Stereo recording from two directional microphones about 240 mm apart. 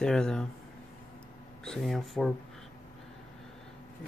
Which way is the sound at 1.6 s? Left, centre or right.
Centre.